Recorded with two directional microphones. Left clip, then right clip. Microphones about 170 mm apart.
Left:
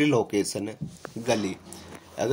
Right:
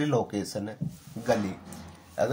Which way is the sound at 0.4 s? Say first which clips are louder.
Left 5 dB; 20° left (ahead or behind).